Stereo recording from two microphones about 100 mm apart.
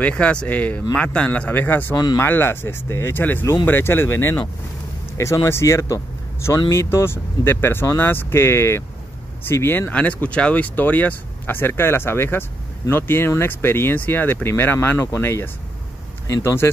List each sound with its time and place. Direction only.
0.0 s a man's voice: 10° left (ahead or behind)